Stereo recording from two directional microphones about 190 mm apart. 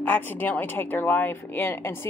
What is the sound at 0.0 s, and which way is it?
A woman's voice, 10° left (ahead or behind).